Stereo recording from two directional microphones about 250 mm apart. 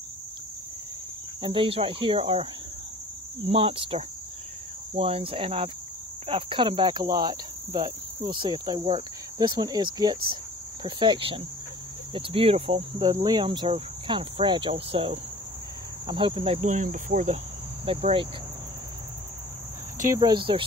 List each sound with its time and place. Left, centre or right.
1.4 s cricket: right
3.4 s cricket: right
20.2 s cricket: centre